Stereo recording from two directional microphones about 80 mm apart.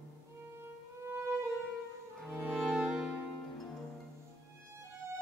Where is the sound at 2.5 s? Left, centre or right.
Centre.